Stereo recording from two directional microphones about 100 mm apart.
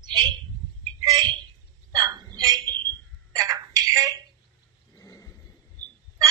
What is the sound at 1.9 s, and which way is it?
Hiccup, 45° right (ahead or behind).